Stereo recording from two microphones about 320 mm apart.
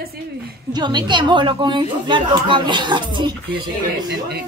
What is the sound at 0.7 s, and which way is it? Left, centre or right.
A woman's voice, centre.